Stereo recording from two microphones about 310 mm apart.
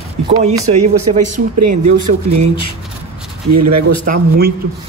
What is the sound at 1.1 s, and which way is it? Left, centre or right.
Speech, right.